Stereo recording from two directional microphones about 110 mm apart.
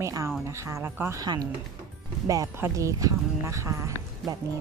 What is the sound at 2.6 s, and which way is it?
Speech, 25° right (ahead or behind).